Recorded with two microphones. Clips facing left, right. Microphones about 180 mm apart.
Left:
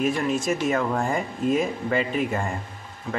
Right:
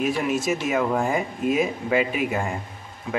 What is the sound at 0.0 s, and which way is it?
Speech, 5° right (ahead or behind).